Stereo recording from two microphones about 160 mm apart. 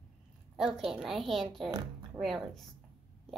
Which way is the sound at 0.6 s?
5° right (ahead or behind).